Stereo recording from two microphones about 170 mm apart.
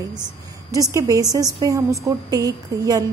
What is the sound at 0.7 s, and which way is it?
A woman's voice, 20° right (ahead or behind).